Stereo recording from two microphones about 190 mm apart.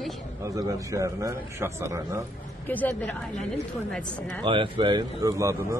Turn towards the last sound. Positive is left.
turn(degrees=-15)  # may be behind; listen again after turning